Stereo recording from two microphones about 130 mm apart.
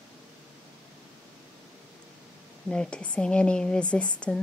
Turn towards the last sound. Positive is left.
turn(degrees=10)  # may be behind; listen again after turning